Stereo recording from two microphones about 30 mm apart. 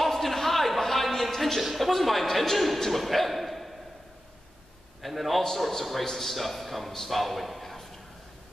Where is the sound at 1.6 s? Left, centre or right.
Centre.